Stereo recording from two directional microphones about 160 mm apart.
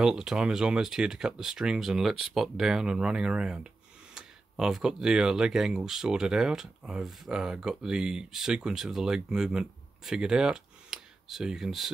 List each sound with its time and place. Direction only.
0.0 s speech: 5° right (ahead or behind)